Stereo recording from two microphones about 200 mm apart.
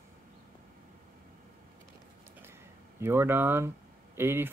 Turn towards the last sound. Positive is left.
turn(degrees=-10)  # may be behind; listen again after turning